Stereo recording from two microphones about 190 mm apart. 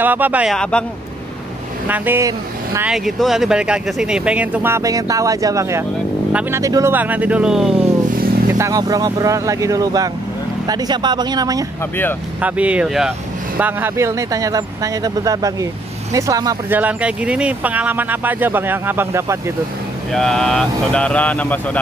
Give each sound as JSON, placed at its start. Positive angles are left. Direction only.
{"t": 0.0, "sound": "speech", "side_deg": -10}
{"t": 0.6, "sound": "speech", "side_deg": 5}
{"t": 1.9, "sound": "speech", "side_deg": -10}
{"t": 2.9, "sound": "speech", "side_deg": 0}
{"t": 8.5, "sound": "speech", "side_deg": -15}
{"t": 12.4, "sound": "speech", "side_deg": -5}
{"t": 20.1, "sound": "speech", "side_deg": 5}